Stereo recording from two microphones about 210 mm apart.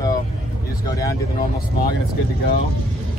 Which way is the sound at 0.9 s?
15° left (ahead or behind).